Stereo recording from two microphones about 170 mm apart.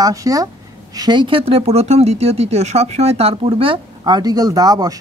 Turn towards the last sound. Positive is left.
turn(degrees=-20)  # may be behind; listen again after turning